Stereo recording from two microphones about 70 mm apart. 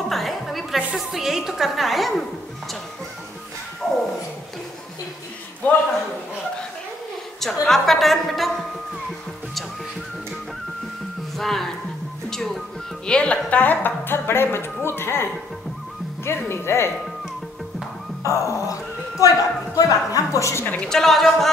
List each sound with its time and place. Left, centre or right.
0.1 s a woman's voice: centre
3.8 s dog: centre
5.6 s a woman's voice: left
7.3 s a woman's voice: centre
11.3 s a woman's voice: centre; by 15.2 s left
16.3 s speech: left
18.2 s speech: left
20.7 s a woman's voice: centre
21.0 s a woman's voice: centre